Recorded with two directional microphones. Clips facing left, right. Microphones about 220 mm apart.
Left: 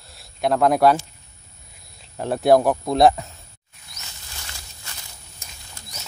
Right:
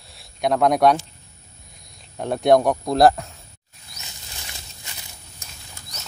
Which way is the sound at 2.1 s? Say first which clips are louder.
Even; centre (ahead or behind).